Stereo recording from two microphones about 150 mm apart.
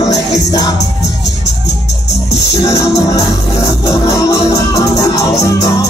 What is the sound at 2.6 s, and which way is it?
Music, 20° left (ahead or behind).